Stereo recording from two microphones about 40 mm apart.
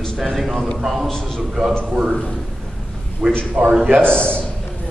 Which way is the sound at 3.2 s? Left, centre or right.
Centre.